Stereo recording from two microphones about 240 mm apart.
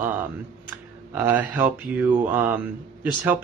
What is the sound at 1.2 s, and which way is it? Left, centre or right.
A man's voice, centre.